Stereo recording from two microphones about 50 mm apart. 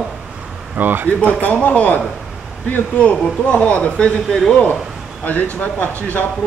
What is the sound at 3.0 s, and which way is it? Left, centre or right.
Speech, left.